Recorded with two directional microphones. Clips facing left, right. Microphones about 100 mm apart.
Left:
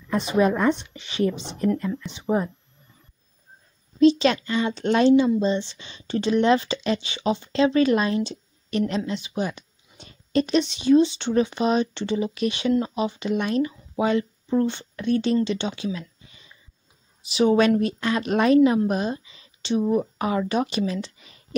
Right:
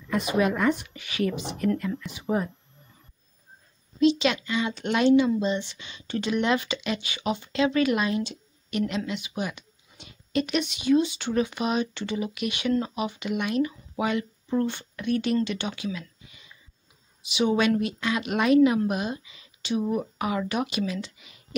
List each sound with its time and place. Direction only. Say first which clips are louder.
0.1 s a woman's voice: left 3 dB; 30° left (ahead or behind)
4.0 s speech: left 5 dB; 35° left (ahead or behind)